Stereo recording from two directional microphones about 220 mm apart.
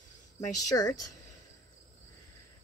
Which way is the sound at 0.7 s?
15° left (ahead or behind).